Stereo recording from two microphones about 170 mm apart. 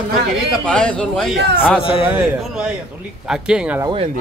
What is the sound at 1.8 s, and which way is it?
Speech, 30° left (ahead or behind).